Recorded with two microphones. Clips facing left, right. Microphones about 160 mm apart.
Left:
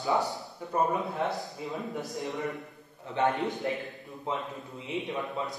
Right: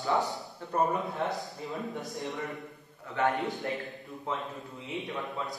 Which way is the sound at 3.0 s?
20° left (ahead or behind).